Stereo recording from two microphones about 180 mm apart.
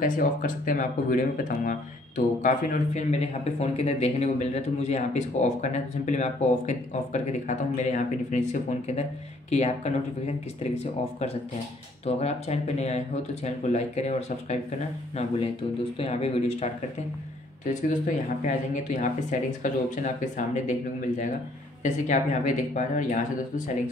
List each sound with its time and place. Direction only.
0.0 s speech: 50° left (ahead or behind)
12.2 s speech: 35° left (ahead or behind)
21.8 s speech: 40° left (ahead or behind)